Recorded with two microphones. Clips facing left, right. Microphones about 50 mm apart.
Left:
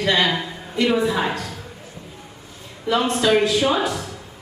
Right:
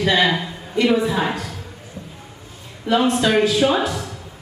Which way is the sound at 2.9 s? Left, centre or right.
Centre.